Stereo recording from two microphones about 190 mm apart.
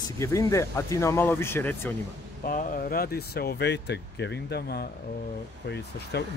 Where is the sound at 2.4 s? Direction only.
45° left (ahead or behind).